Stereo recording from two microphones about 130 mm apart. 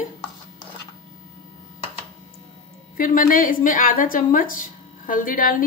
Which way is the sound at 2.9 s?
90° left.